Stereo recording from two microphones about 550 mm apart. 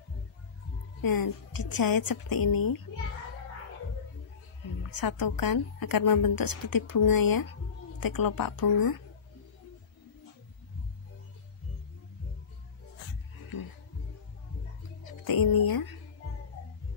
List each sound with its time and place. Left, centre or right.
1.0 s a woman's voice: left
4.9 s a woman's voice: left
15.0 s speech: left